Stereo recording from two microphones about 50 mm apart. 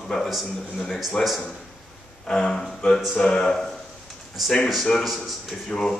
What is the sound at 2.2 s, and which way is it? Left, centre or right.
Speech, centre.